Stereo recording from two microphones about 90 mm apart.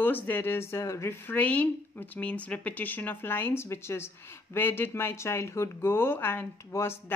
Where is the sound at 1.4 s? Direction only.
15° left (ahead or behind).